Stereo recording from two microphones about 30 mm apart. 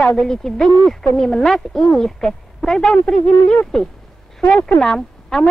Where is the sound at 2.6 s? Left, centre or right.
Left.